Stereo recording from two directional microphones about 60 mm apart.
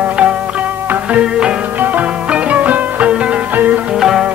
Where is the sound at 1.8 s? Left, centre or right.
Right.